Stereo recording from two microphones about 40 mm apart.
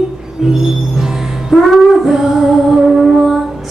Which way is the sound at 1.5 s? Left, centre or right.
Centre.